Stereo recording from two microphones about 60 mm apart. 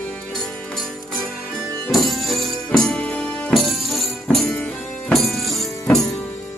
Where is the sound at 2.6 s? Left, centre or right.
Centre.